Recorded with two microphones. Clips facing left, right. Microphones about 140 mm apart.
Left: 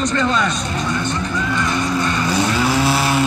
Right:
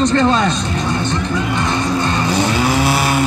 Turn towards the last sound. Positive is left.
turn(degrees=-15)  # may be behind; listen again after turning